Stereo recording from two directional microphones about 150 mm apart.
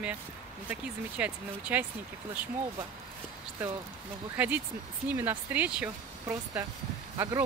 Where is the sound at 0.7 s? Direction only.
10° right (ahead or behind).